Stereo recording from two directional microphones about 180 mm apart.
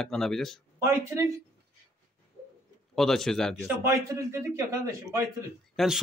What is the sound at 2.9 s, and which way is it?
Speech, centre (ahead or behind).